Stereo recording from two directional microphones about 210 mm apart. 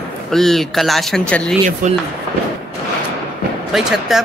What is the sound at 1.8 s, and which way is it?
Speech, 40° right (ahead or behind).